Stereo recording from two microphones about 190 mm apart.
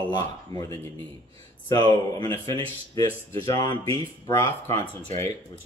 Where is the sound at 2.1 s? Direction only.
20° left (ahead or behind).